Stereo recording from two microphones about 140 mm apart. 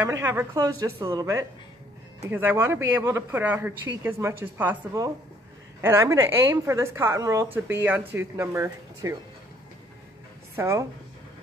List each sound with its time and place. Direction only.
0.0 s a woman's voice: 15° right (ahead or behind)
10.5 s speech: 20° right (ahead or behind)